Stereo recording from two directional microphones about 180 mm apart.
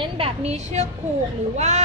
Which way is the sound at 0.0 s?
35° right (ahead or behind).